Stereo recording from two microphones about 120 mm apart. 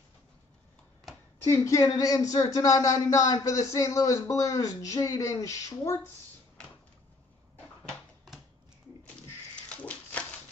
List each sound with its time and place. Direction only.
1.4 s speech: 25° left (ahead or behind)
9.7 s dog: 10° left (ahead or behind)